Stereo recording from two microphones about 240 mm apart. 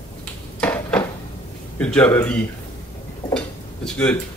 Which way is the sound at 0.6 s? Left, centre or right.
Centre.